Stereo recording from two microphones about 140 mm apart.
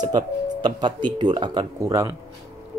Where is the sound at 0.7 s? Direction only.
30° right (ahead or behind).